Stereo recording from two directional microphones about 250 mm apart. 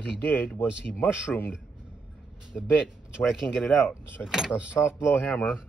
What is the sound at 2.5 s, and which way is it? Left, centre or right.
Speech, centre.